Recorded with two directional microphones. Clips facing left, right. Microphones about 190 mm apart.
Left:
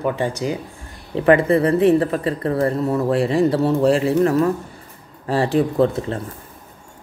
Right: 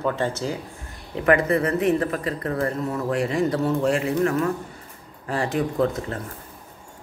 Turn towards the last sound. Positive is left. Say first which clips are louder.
# left 5 dB
turn(degrees=30)  # may be behind; listen again after turning